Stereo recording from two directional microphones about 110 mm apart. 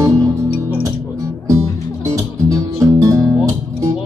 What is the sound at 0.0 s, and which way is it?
Music, 30° right (ahead or behind).